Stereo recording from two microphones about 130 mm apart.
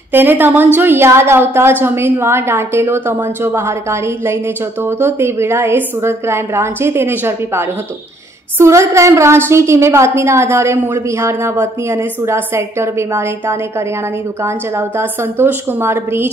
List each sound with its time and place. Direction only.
0.1 s a woman's voice: 15° right (ahead or behind)